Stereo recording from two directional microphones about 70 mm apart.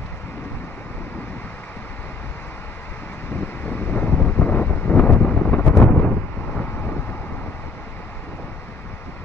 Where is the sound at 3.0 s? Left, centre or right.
Left.